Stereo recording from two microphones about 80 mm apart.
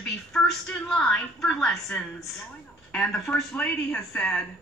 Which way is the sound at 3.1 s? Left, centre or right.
Centre.